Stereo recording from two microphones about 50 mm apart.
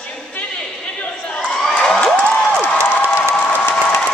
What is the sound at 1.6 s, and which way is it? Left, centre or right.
Crowd, centre.